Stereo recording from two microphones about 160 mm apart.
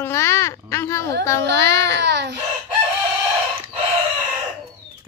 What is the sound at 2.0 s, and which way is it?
Speech, 90° right.